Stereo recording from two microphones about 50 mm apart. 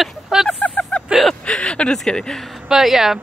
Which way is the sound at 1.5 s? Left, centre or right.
Centre.